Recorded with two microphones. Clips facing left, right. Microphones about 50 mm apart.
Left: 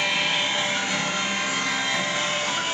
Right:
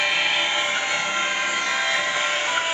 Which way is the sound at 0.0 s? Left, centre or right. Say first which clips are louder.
Right 2 dB; centre.